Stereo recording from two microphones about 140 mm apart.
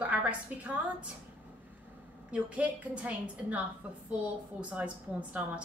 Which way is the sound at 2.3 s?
10° right (ahead or behind).